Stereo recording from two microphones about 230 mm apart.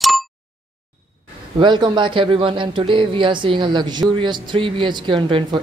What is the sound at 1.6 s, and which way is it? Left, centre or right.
Speech, centre.